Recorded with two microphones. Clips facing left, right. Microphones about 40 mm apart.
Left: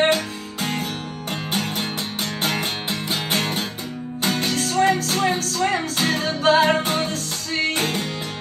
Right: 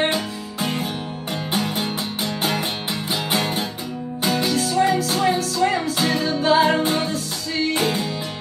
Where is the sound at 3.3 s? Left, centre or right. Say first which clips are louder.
Right 2 dB; left.